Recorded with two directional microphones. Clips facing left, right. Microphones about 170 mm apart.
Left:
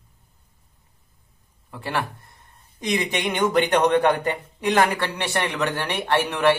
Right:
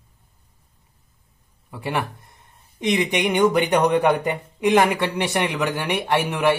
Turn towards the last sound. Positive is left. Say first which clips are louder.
# even
turn(degrees=-15)  # may be behind; listen again after turning